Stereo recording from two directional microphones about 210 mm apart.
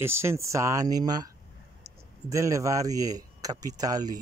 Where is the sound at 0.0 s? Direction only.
10° right (ahead or behind).